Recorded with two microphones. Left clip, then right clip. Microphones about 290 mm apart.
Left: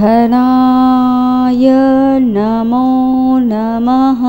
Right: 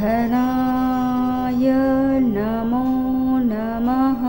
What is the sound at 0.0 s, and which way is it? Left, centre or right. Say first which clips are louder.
Mantra: left 10 dB; left.